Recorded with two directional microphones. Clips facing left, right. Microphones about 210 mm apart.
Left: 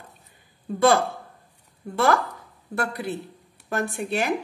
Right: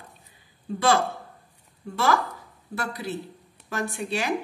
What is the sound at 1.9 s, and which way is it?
Speech, 60° left (ahead or behind).